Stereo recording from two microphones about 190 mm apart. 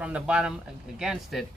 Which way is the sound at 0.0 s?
5° right (ahead or behind).